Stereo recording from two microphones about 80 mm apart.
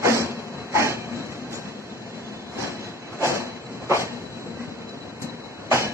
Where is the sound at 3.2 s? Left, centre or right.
Right.